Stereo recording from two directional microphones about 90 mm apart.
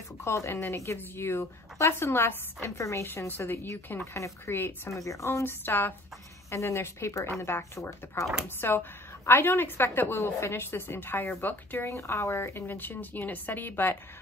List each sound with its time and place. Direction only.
0.2 s a woman's voice: 30° left (ahead or behind)
11.9 s a woman's voice: 30° left (ahead or behind)